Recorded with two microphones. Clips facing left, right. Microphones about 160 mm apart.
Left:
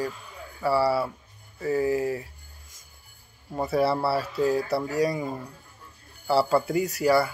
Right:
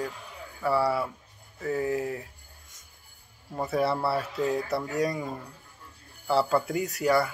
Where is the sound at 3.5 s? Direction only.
5° left (ahead or behind).